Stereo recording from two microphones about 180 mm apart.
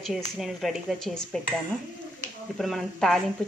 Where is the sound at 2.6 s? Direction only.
Centre (ahead or behind).